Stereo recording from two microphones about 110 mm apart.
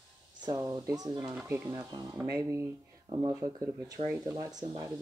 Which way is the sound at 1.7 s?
40° right (ahead or behind).